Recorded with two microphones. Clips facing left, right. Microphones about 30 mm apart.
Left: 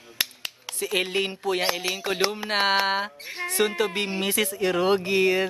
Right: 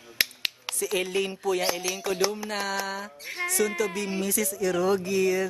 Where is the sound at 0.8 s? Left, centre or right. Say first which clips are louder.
Left 2 dB; left.